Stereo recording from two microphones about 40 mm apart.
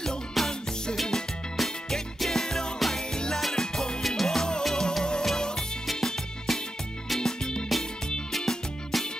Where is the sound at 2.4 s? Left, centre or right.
Centre.